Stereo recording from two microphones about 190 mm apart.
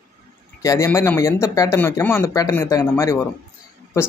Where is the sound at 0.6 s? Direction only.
15° left (ahead or behind).